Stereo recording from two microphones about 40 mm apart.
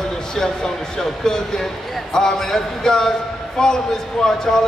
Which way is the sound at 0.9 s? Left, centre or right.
Centre.